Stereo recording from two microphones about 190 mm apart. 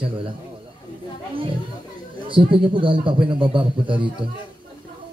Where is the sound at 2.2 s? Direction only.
25° right (ahead or behind).